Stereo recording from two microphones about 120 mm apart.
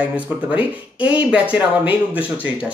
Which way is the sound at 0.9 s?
10° right (ahead or behind).